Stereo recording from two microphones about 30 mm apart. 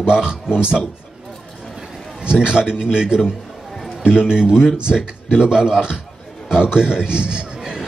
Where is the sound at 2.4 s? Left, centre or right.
Right.